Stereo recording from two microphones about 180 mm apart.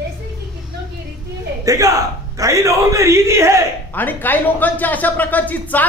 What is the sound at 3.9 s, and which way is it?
Speech, 10° left (ahead or behind).